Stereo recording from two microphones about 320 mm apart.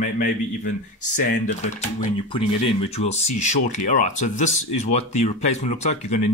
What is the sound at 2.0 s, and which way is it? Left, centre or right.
Speech, centre.